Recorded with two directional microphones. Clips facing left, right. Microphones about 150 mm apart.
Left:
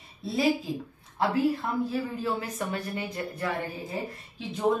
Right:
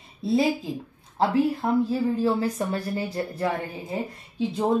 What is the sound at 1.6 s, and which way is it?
Speech, 25° right (ahead or behind).